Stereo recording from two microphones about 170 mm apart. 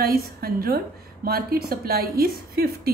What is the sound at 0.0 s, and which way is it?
A woman's voice, 60° right (ahead or behind).